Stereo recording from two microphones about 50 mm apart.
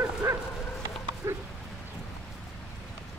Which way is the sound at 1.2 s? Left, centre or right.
Right.